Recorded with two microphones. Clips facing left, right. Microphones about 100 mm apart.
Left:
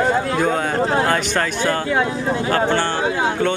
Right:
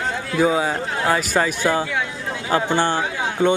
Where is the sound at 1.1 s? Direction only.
10° right (ahead or behind).